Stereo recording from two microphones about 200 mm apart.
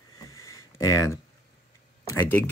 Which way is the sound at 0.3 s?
15° left (ahead or behind).